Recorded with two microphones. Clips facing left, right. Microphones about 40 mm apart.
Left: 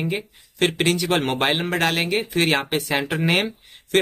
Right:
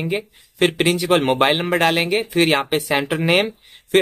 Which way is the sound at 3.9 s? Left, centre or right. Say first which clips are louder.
Right 4 dB; centre.